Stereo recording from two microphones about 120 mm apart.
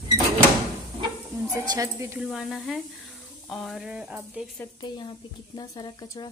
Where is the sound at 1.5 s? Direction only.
30° right (ahead or behind).